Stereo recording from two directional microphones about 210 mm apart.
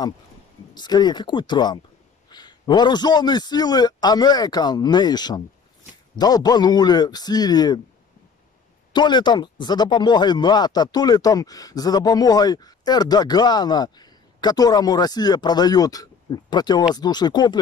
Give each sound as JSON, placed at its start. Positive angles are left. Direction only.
{"t": 0.7, "sound": "speech", "side_deg": 20}
{"t": 8.9, "sound": "speech", "side_deg": 20}